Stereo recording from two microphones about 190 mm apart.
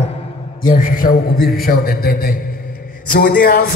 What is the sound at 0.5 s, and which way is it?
A man's voice, 45° left (ahead or behind).